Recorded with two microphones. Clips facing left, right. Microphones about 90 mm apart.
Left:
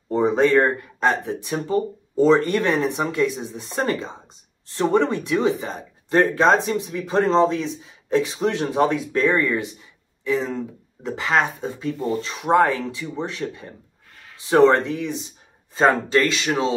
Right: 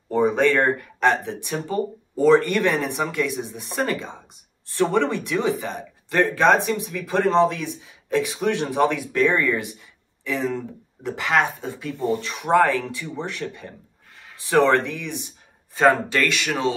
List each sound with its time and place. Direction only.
0.1 s speech: 20° left (ahead or behind)
2.2 s speech: 20° left (ahead or behind)
4.7 s speech: 20° left (ahead or behind)